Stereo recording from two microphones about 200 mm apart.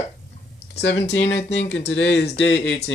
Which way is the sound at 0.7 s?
60° left (ahead or behind).